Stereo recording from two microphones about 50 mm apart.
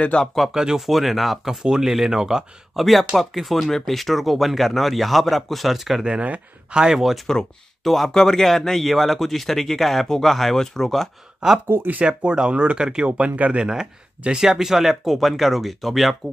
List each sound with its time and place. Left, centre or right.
0.2 s speech: centre
0.5 s speech: centre
2.7 s speech: centre
6.0 s speech: right
6.8 s speech: centre
7.2 s speech: centre
11.6 s speech: right
12.2 s speech: centre
13.7 s speech: centre